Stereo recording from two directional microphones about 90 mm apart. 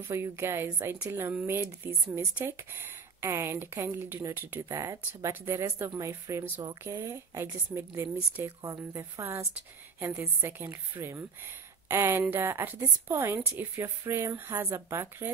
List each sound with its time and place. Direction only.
0.1 s speech: 30° right (ahead or behind)
4.6 s speech: 40° right (ahead or behind)
5.3 s speech: 30° right (ahead or behind)